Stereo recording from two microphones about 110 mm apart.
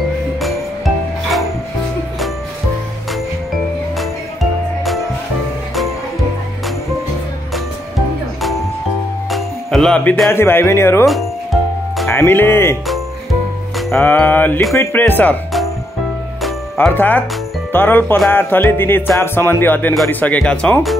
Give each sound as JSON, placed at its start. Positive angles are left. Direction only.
{"t": 0.4, "sound": "music", "side_deg": 0}
{"t": 9.3, "sound": "music", "side_deg": 5}
{"t": 10.3, "sound": "speech", "side_deg": 20}
{"t": 12.1, "sound": "speech", "side_deg": 20}
{"t": 13.9, "sound": "speech", "side_deg": 15}
{"t": 16.9, "sound": "speech", "side_deg": 15}